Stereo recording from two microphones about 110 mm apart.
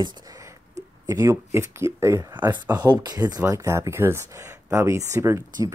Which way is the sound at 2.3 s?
40° right (ahead or behind).